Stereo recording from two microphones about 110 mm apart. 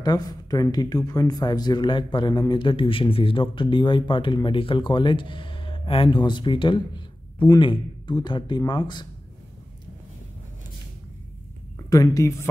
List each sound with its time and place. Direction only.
0.0 s speech: 35° left (ahead or behind)
11.9 s a woman's voice: 30° left (ahead or behind)